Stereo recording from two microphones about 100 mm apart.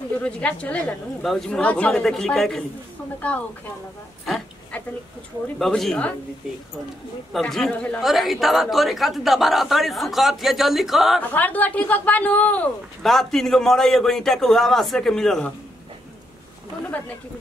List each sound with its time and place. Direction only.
0.2 s a woman's voice: 10° left (ahead or behind)
1.6 s a woman's voice: 15° left (ahead or behind)
3.2 s speech: 15° left (ahead or behind)
5.6 s speech: 5° left (ahead or behind)
7.3 s a woman's voice: 5° left (ahead or behind)
11.1 s speech: 15° left (ahead or behind)
13.0 s a woman's voice: 5° left (ahead or behind)